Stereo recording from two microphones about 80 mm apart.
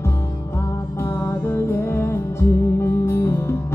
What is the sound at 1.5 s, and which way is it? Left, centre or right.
Music, left.